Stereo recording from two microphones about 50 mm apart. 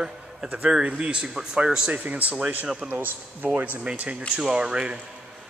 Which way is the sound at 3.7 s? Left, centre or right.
Right.